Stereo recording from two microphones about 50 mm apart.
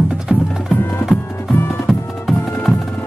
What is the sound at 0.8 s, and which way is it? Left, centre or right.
Music, left.